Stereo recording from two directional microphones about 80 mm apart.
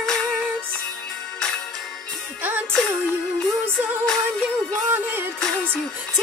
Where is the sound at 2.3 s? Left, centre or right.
Right.